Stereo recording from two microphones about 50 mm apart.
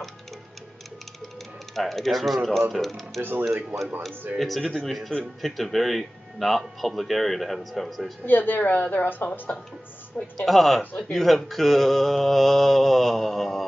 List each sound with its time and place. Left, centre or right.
1.8 s speech: centre
3.2 s speech: right
4.4 s speech: centre
8.3 s a woman's voice: left
10.3 s speech: centre